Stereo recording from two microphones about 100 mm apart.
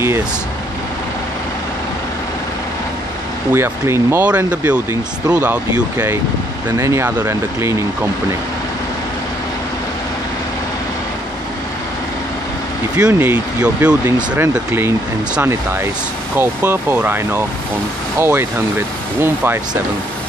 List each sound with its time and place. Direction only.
3.5 s speech: 25° right (ahead or behind)
4.5 s speech: 10° right (ahead or behind)
6.8 s speech: 30° right (ahead or behind)
12.9 s speech: 15° right (ahead or behind)